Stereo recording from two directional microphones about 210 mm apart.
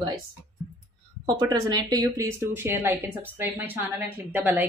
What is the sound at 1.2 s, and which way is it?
A woman's voice, 20° right (ahead or behind).